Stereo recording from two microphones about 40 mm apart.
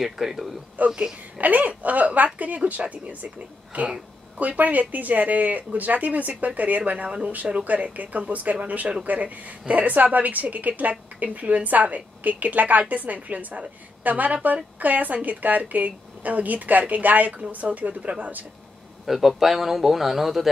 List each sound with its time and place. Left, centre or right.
0.0 s speech: centre
0.8 s a woman's voice: right
19.0 s a man's voice: centre